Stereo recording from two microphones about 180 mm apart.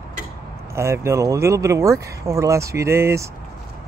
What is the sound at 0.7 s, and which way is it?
Speech, 15° right (ahead or behind).